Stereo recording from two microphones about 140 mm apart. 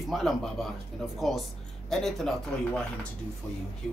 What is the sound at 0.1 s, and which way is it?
Speech, centre (ahead or behind).